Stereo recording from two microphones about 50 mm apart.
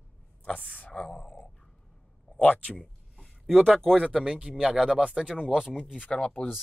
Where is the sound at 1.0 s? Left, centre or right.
Centre.